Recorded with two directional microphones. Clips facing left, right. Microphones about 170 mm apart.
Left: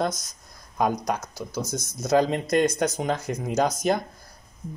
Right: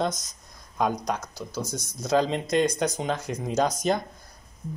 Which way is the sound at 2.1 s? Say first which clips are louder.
Left 2 dB; 10° left (ahead or behind).